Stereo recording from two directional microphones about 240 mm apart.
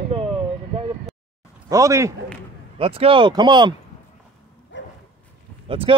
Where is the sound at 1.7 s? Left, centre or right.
Centre.